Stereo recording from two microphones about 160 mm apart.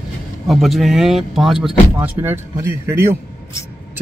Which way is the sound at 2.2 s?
15° right (ahead or behind).